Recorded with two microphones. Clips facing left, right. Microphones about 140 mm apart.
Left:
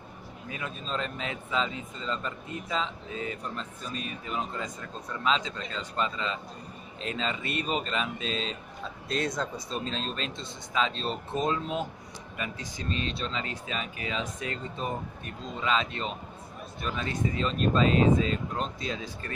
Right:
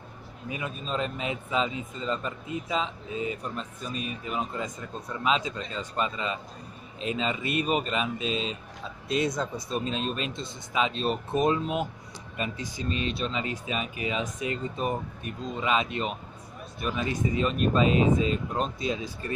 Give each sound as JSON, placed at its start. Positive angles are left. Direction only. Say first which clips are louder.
{"t": 0.5, "sound": "speech", "louder": "right 3 dB", "side_deg": -15}
{"t": 12.4, "sound": "speech", "louder": "right 4 dB", "side_deg": -25}
{"t": 12.7, "sound": "speech", "louder": "right 2 dB", "side_deg": -10}